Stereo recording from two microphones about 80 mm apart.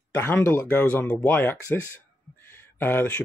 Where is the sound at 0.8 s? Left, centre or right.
Centre.